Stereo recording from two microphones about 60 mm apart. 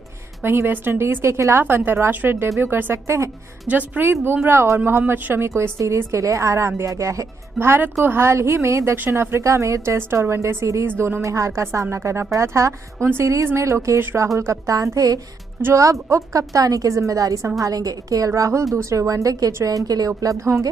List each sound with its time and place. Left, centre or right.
0.4 s speech: right
3.6 s speech: right
4.1 s a woman's voice: right
7.5 s a woman's voice: right
10.9 s speech: right
11.2 s a woman's voice: right
13.9 s speech: right
14.2 s a woman's voice: right
15.7 s a woman's voice: right